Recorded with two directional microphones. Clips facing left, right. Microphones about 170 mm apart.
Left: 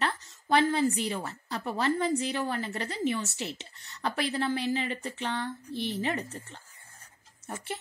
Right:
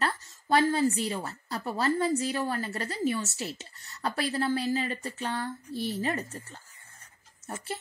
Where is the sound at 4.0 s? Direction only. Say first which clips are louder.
Even; 5° right (ahead or behind).